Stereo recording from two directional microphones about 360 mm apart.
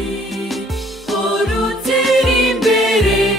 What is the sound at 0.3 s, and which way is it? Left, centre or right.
Music, centre.